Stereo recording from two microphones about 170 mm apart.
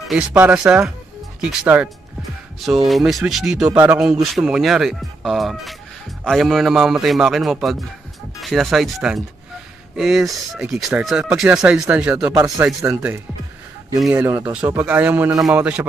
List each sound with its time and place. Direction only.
0.1 s speech: 10° right (ahead or behind)
2.9 s speech: centre (ahead or behind)
12.3 s speech: 20° right (ahead or behind)